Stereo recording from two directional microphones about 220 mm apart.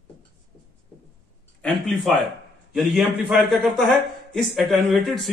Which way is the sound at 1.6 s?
Centre (ahead or behind).